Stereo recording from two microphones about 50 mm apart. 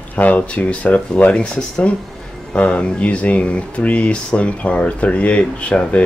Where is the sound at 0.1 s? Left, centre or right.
Left.